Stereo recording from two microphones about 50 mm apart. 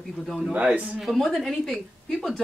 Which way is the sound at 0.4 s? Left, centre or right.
Centre.